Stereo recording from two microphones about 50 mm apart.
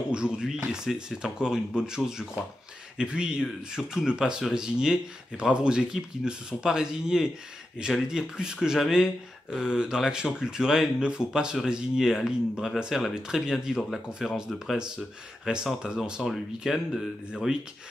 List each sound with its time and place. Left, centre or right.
0.1 s speech: centre
16.2 s speech: centre
17.3 s speech: centre